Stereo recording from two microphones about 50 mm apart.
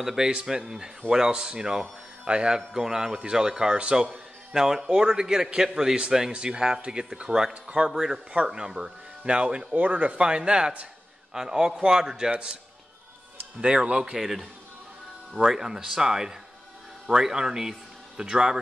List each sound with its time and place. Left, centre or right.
0.0 s speech: centre
9.8 s speech: right; by 12.3 s centre
13.6 s speech: right
14.1 s a man's voice: centre